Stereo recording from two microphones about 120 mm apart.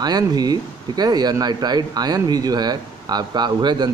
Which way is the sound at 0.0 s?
35° right (ahead or behind).